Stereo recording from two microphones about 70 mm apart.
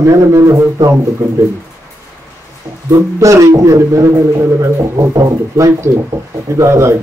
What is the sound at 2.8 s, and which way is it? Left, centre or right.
A man's voice, right.